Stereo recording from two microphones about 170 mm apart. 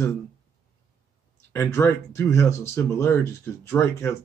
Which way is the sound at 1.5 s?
15° left (ahead or behind).